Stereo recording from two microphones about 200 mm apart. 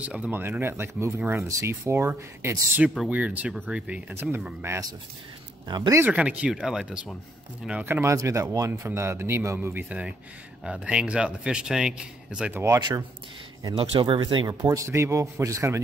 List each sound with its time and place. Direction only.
0.0 s a man's voice: 5° right (ahead or behind)